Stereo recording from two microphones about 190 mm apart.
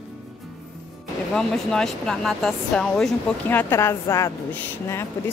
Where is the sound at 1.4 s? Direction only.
5° left (ahead or behind).